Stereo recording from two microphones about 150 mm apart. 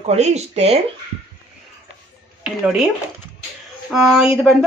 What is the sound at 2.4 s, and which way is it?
Speech, centre (ahead or behind).